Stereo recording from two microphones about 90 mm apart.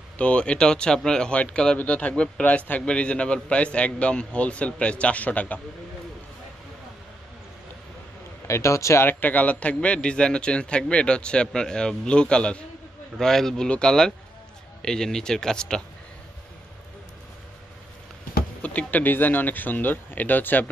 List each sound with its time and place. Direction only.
0.2 s speech: 15° left (ahead or behind)
8.5 s speech: 35° left (ahead or behind); by 15.8 s 10° left (ahead or behind)
18.6 s speech: 15° left (ahead or behind)